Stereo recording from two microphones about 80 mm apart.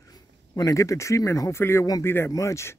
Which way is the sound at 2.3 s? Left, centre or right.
Left.